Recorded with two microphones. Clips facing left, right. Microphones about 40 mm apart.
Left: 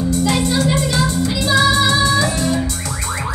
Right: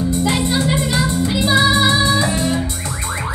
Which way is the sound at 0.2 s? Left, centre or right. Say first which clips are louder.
Left 1 dB; right.